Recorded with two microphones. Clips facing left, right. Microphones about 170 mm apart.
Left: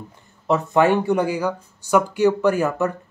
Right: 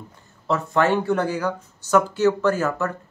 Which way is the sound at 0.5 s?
15° left (ahead or behind).